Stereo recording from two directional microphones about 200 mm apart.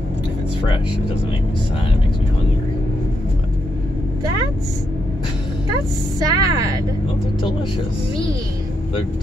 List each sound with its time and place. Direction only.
6.1 s a woman's voice: 15° right (ahead or behind)